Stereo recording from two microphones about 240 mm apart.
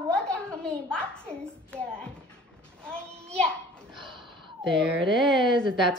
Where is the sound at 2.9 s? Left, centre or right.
Centre.